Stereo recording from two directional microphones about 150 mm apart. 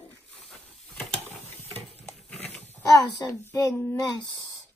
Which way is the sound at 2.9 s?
20° left (ahead or behind).